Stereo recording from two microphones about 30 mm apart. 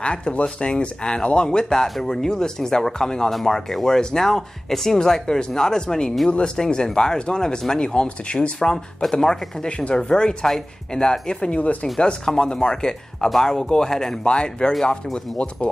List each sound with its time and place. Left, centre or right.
0.0 s speech: left
9.7 s speech: left
9.9 s speech: left
10.4 s speech: centre
11.0 s speech: left
11.6 s speech: left
12.3 s speech: left
14.2 s speech: left